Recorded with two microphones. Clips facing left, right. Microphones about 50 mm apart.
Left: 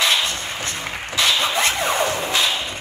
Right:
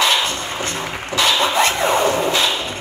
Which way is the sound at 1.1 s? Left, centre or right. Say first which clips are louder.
Right 4 dB; right.